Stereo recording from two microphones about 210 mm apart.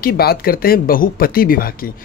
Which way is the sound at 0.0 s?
45° left (ahead or behind).